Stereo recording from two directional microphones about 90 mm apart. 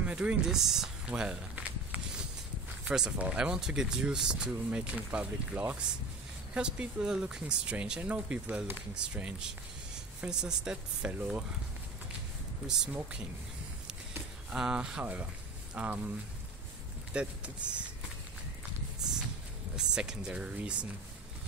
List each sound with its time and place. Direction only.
0.0 s speech: 10° right (ahead or behind)
14.5 s speech: 10° right (ahead or behind)
17.1 s speech: 15° right (ahead or behind)
19.7 s speech: 10° right (ahead or behind)